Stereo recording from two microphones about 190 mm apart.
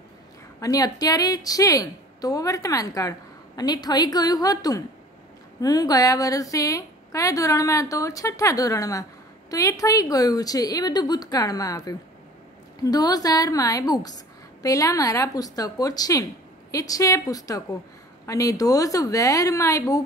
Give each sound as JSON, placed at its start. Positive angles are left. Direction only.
{"t": 0.6, "sound": "a woman's voice", "side_deg": 20}